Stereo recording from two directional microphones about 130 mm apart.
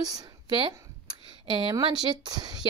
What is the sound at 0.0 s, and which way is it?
Speech, 30° right (ahead or behind).